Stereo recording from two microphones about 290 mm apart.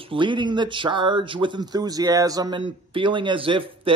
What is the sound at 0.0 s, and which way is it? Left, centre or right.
Speech, centre.